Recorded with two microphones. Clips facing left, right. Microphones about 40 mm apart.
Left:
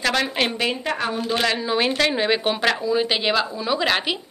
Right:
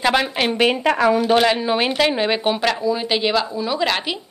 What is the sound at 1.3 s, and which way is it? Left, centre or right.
A woman's voice, centre.